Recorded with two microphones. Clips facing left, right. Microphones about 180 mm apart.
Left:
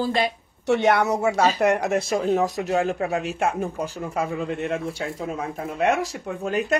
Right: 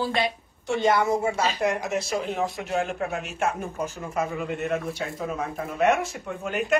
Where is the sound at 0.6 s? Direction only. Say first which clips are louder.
Left 3 dB; 70° left (ahead or behind); by 6.7 s 35° left (ahead or behind).